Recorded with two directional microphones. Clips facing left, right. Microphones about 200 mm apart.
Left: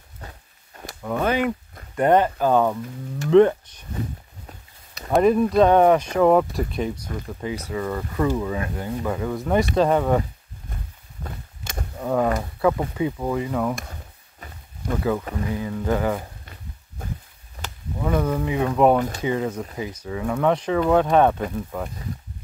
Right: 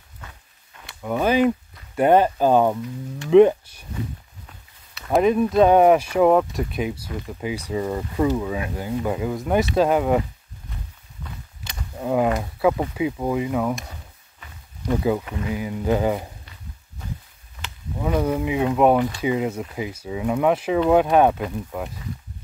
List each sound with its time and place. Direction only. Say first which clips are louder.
0.2 s walk: left 3 dB; 35° left (ahead or behind)
1.0 s speech: right 3 dB; 10° right (ahead or behind)
4.5 s a sound: left 4 dB; 40° left (ahead or behind)
5.1 s speech: left 1 dB; centre (ahead or behind)
9.3 s speech: left 1 dB; centre (ahead or behind)
11.2 s walk: left 3 dB; 45° left (ahead or behind)
12.0 s speech: right 1 dB; 10° right (ahead or behind)
14.4 s a sound: left 4 dB; 40° left (ahead or behind)
14.9 s speech: right 2 dB; 15° right (ahead or behind)
17.0 s a sound: left 1 dB; 50° left (ahead or behind)
18.0 s speech: right 1 dB; 10° right (ahead or behind)